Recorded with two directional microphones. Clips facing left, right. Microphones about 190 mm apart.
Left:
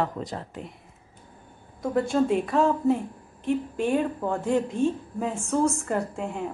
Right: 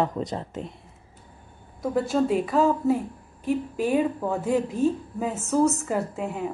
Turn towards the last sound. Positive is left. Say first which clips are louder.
# right 1 dB
turn(degrees=0)  # may be behind; listen again after turning